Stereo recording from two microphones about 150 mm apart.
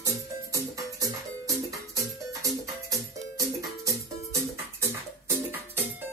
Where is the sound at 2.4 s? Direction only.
20° right (ahead or behind).